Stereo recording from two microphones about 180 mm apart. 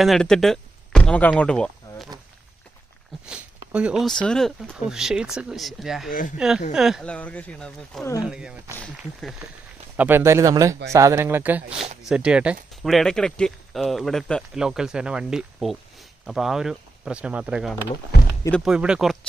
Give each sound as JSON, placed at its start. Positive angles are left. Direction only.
{"t": 0.0, "sound": "speech", "side_deg": 0}
{"t": 3.3, "sound": "speech", "side_deg": -5}
{"t": 6.0, "sound": "speech", "side_deg": 50}
{"t": 6.3, "sound": "speech", "side_deg": -5}
{"t": 9.9, "sound": "speech", "side_deg": -10}